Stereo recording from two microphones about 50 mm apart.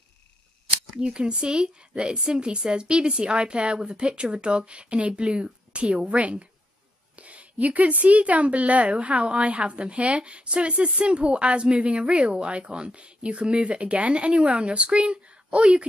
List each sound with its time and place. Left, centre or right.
1.0 s speech: centre